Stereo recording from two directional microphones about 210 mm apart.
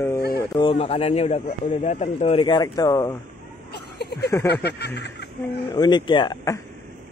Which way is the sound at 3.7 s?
50° left (ahead or behind).